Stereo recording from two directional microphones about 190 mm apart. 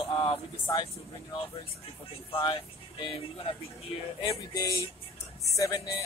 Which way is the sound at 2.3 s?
25° left (ahead or behind).